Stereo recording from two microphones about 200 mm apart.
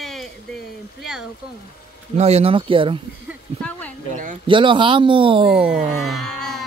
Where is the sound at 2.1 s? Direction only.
30° right (ahead or behind).